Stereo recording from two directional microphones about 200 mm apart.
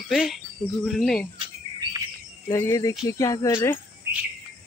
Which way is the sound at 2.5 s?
15° left (ahead or behind).